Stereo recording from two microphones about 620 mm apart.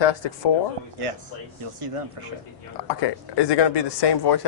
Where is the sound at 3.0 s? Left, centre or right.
Left.